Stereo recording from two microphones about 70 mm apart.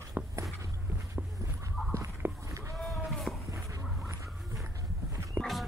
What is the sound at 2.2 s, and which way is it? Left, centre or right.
Livestock, right.